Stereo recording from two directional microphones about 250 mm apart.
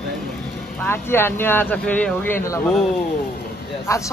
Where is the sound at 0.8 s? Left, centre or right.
Centre.